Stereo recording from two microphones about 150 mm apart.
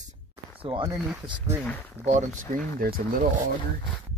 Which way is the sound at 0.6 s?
35° right (ahead or behind).